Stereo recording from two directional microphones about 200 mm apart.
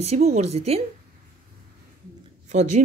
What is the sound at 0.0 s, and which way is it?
Speech, 30° right (ahead or behind).